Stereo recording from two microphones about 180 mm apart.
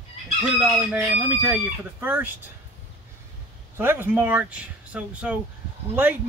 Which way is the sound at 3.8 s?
10° right (ahead or behind).